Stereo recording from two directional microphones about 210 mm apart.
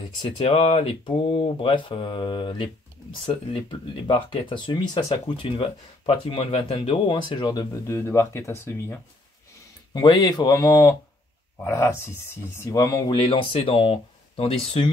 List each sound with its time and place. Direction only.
0.4 s speech: 30° left (ahead or behind)